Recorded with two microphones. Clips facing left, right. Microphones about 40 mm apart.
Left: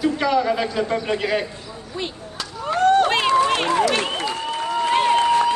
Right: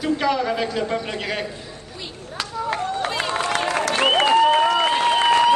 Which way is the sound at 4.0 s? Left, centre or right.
Right.